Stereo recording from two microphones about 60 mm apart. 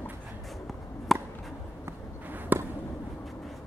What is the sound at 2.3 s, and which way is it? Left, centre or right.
Basketball bounce, right.